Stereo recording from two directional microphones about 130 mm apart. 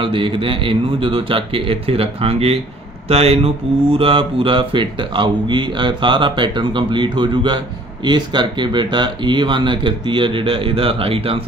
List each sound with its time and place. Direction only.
0.0 s speech: 40° right (ahead or behind)